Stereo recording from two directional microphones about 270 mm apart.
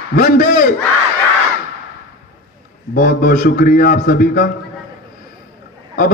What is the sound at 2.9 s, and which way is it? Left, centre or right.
A man's voice, left.